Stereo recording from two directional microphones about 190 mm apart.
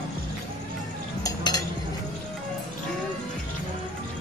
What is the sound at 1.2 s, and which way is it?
Cutlery, 20° left (ahead or behind).